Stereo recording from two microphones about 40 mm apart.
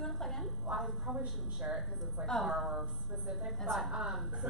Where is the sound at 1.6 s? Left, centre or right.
Right.